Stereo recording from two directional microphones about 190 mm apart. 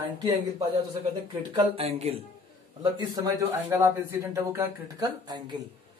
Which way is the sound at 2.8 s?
20° right (ahead or behind).